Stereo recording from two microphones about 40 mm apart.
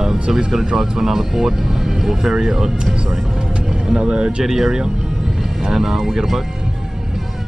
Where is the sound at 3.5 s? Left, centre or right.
Right.